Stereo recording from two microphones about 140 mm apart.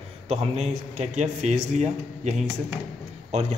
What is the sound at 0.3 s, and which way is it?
Speech, 50° right (ahead or behind).